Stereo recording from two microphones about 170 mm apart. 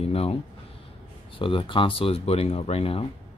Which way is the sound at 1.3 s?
30° left (ahead or behind).